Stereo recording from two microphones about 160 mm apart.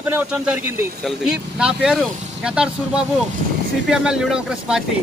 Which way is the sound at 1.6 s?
5° right (ahead or behind).